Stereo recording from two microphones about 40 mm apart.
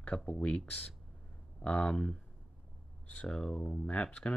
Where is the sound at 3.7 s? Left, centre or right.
Left.